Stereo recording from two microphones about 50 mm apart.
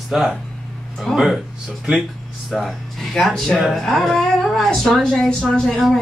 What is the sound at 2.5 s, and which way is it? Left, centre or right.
Speech, centre.